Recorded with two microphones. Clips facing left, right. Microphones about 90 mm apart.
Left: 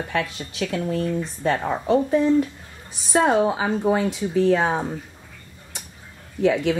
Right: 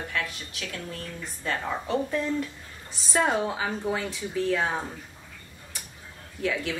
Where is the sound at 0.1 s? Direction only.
30° left (ahead or behind).